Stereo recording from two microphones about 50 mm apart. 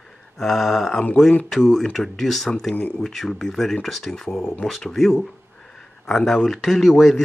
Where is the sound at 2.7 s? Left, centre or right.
Left.